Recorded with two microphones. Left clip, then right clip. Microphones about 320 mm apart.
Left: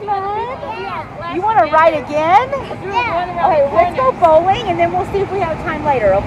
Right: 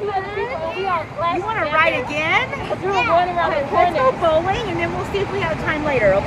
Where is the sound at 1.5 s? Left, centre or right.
Centre.